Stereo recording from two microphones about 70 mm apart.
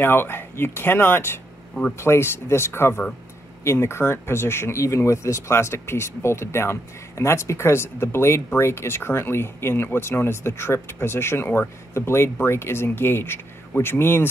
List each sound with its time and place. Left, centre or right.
0.0 s speech: left